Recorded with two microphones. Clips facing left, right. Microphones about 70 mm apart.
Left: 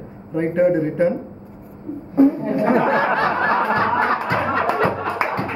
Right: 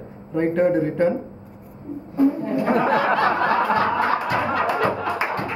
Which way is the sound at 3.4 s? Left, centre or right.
Left.